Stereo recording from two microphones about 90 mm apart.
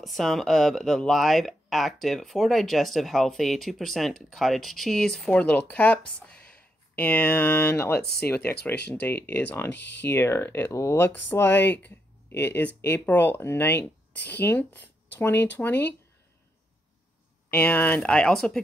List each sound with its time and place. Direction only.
0.0 s speech: centre (ahead or behind); by 11.1 s 35° left (ahead or behind)
11.1 s speech: 20° left (ahead or behind)
17.5 s speech: 15° left (ahead or behind)